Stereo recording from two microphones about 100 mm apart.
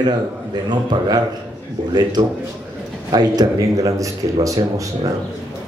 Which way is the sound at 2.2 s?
55° right (ahead or behind).